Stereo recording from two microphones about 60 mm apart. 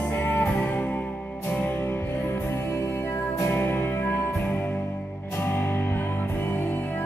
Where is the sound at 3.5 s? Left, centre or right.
Left.